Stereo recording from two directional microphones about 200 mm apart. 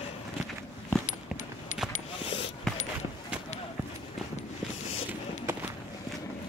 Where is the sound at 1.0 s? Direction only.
40° left (ahead or behind).